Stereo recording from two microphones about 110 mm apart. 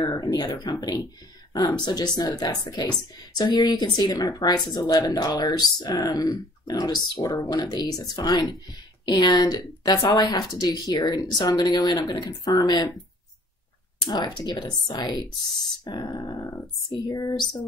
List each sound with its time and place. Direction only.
0.0 s speech: 40° left (ahead or behind)
2.1 s speech: 35° left (ahead or behind)
14.0 s speech: 40° left (ahead or behind)